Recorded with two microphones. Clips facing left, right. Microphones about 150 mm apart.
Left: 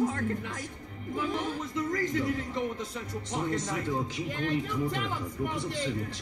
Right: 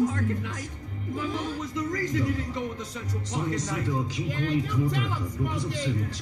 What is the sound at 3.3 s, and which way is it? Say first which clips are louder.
A man's voice: right 1 dB; 35° right (ahead or behind).